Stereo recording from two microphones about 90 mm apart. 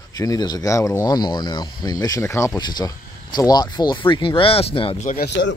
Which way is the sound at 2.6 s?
50° left (ahead or behind).